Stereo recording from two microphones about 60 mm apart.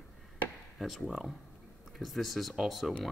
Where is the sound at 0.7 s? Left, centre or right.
Centre.